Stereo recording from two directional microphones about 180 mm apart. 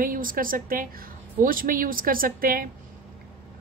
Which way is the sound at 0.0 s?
50° right (ahead or behind).